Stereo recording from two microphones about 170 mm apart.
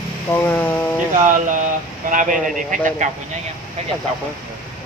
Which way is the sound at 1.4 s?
50° right (ahead or behind).